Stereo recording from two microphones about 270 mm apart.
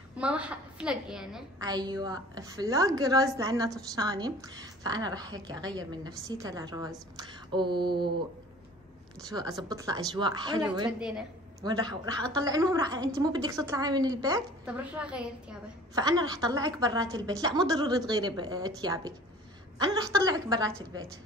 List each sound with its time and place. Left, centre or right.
0.2 s a woman's voice: centre
1.6 s a woman's voice: centre
9.2 s a woman's voice: centre
10.9 s a woman's voice: centre
11.6 s a woman's voice: centre
15.9 s a woman's voice: centre